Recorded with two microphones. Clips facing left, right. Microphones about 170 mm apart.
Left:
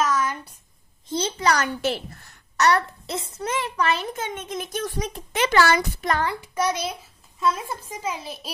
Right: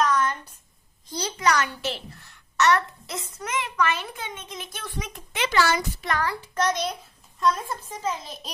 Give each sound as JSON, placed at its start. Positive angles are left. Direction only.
{"t": 0.0, "sound": "a sound", "side_deg": 5}
{"t": 1.0, "sound": "a child's voice", "side_deg": 25}
{"t": 1.8, "sound": "a child's voice", "side_deg": 45}
{"t": 6.2, "sound": "a child's voice", "side_deg": 10}